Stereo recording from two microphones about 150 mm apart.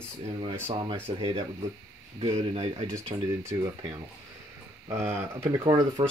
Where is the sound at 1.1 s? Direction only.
30° right (ahead or behind).